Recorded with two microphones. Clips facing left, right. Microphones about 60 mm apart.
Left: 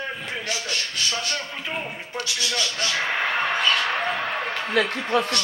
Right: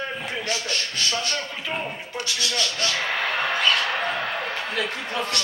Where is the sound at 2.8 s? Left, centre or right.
Centre.